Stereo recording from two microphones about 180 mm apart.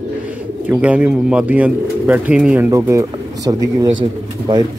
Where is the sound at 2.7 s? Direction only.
15° right (ahead or behind).